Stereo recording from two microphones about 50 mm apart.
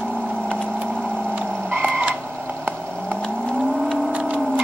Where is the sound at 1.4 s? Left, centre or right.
Right.